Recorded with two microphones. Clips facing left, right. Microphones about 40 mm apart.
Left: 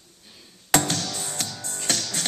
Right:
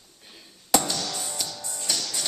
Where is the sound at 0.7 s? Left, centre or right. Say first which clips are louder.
Left 2 dB; left.